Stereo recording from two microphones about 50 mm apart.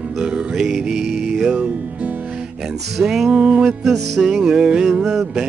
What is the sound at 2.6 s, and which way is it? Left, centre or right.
Music, centre.